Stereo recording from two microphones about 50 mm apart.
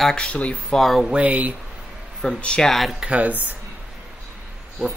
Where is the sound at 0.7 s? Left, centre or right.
Centre.